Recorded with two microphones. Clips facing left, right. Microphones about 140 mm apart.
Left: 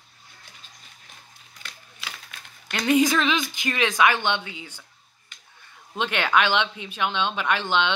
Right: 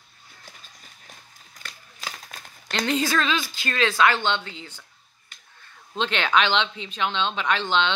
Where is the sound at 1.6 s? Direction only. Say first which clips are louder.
Right 3 dB; 40° right (ahead or behind).